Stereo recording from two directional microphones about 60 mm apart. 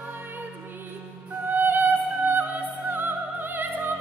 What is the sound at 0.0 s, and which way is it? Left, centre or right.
Music, right.